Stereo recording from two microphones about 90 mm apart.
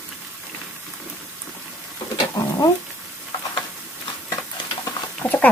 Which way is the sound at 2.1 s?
45° left (ahead or behind).